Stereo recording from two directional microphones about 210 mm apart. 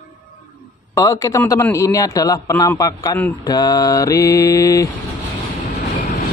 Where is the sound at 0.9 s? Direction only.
15° left (ahead or behind).